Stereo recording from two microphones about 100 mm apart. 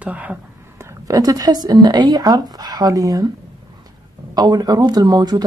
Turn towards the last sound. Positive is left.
turn(degrees=-45)  # may be behind; listen again after turning